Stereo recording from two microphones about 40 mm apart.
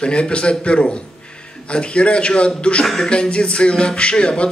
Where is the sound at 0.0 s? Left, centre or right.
Left.